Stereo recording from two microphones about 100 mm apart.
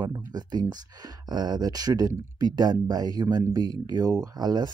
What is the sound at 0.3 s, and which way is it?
Speech, 45° right (ahead or behind).